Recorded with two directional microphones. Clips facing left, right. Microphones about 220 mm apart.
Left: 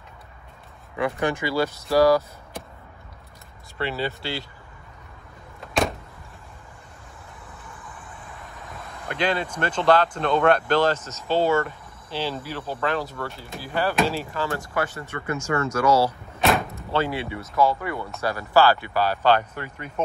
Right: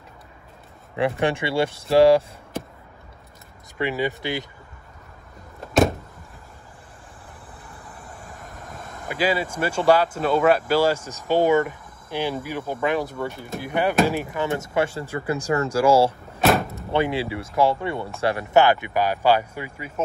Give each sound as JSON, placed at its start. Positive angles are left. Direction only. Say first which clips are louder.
{"t": 0.9, "sound": "speech", "louder": "right 2 dB", "side_deg": -30}
{"t": 3.7, "sound": "speech", "louder": "right 3 dB", "side_deg": -15}
{"t": 5.6, "sound": "vehicle", "louder": "right 6 dB", "side_deg": 0}
{"t": 8.1, "sound": "vehicle", "louder": "right 2 dB", "side_deg": -45}
{"t": 9.0, "sound": "speech", "louder": "right 2 dB", "side_deg": -5}
{"t": 16.4, "sound": "door", "louder": "right 2 dB", "side_deg": 0}
{"t": 16.9, "sound": "speech", "louder": "right 3 dB", "side_deg": -15}
{"t": 17.2, "sound": "speech", "louder": "right 1 dB", "side_deg": -30}